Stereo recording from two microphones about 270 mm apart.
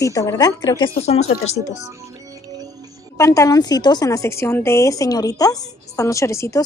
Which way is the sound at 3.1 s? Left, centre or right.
Centre.